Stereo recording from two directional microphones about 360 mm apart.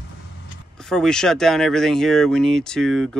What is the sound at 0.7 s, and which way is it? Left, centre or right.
Speech, centre.